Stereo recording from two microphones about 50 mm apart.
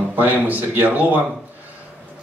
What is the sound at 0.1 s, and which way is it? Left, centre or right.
Speech, right.